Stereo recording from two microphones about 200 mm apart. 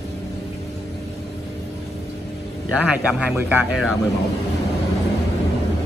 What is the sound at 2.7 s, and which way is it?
A man's voice, 5° right (ahead or behind).